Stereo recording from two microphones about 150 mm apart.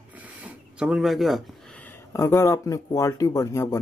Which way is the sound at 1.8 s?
20° left (ahead or behind).